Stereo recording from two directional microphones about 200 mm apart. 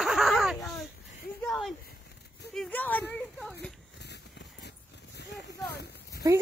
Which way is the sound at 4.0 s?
55° left (ahead or behind).